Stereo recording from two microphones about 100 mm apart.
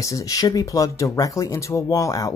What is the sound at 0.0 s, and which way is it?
Speech, 35° left (ahead or behind).